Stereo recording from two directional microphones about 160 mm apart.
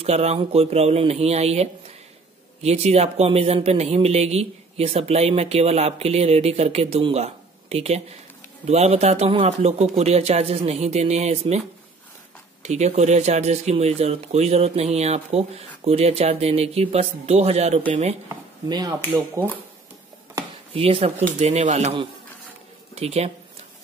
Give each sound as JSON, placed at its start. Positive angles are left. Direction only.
{"t": 0.0, "sound": "speech", "side_deg": -40}
{"t": 12.6, "sound": "speech", "side_deg": -45}
{"t": 18.3, "sound": "speech", "side_deg": -25}
{"t": 20.7, "sound": "speech", "side_deg": -35}